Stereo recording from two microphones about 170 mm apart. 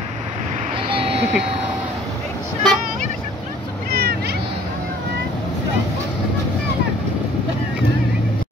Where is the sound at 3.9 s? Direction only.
70° right (ahead or behind).